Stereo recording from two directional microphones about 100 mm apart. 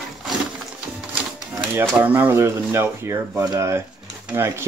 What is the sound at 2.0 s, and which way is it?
Speech, 20° right (ahead or behind).